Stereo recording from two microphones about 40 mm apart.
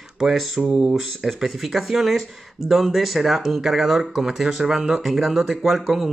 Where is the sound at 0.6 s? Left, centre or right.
Centre.